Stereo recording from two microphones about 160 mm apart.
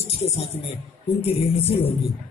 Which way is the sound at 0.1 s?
40° left (ahead or behind).